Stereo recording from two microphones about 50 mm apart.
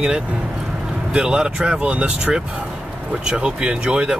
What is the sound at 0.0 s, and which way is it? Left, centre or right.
Speech, centre.